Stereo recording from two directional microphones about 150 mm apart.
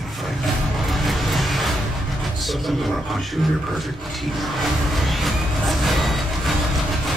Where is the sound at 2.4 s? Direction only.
Centre (ahead or behind).